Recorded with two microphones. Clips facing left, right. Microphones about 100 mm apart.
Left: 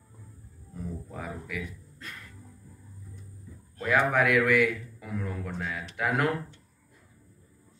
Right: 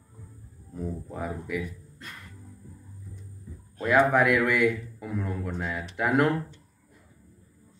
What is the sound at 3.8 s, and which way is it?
A man's voice, 15° right (ahead or behind).